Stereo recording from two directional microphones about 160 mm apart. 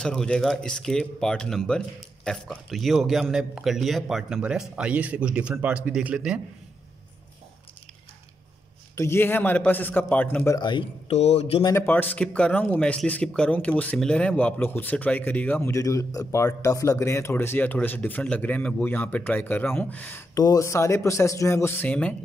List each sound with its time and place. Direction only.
0.0 s a man's voice: 5° left (ahead or behind)
8.9 s speech: 15° left (ahead or behind)
10.6 s speech: 30° left (ahead or behind)
11.1 s speech: 40° left (ahead or behind)
11.6 s speech: 15° left (ahead or behind)
20.3 s speech: 20° left (ahead or behind)